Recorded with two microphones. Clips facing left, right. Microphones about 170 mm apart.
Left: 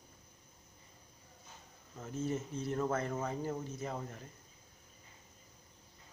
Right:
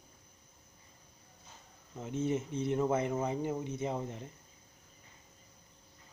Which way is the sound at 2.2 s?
20° right (ahead or behind).